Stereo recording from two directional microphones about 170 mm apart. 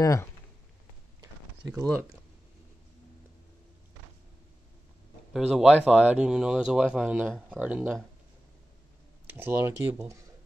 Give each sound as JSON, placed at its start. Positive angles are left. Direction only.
{"t": 0.0, "sound": "speech", "side_deg": 20}
{"t": 5.3, "sound": "speech", "side_deg": 0}
{"t": 6.0, "sound": "speech", "side_deg": -5}
{"t": 9.3, "sound": "speech", "side_deg": -15}